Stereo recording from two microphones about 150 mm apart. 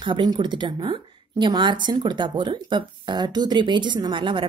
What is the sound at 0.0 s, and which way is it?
A woman's voice, 30° right (ahead or behind).